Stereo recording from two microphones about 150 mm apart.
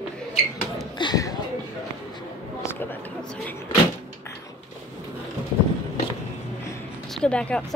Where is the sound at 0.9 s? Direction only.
25° left (ahead or behind).